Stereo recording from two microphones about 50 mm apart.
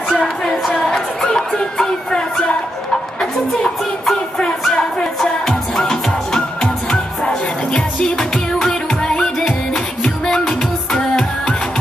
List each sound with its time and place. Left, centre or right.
0.2 s music: centre
6.6 s music: centre
8.5 s music: centre
10.2 s music: centre